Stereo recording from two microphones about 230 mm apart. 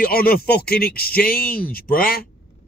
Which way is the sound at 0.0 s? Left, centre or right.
Left.